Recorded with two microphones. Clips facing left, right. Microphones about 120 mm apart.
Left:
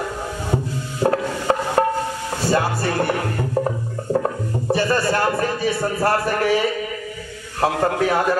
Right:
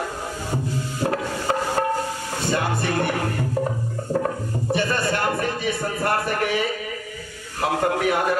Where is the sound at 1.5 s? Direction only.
35° left (ahead or behind).